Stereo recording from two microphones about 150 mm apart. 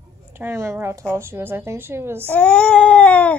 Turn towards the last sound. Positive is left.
turn(degrees=10)  # may be behind; listen again after turning